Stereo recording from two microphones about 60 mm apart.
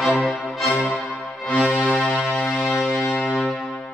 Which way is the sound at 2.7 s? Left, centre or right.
Centre.